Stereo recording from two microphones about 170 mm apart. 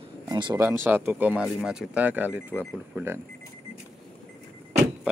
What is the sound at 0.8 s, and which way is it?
Speech, 10° right (ahead or behind).